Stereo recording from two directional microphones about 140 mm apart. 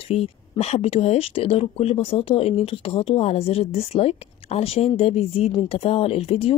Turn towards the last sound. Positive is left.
turn(degrees=40)  # may be behind; listen again after turning